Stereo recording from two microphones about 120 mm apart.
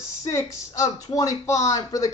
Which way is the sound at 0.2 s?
25° left (ahead or behind).